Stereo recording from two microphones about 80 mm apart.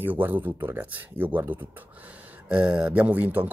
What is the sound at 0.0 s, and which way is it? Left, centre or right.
Speech, right.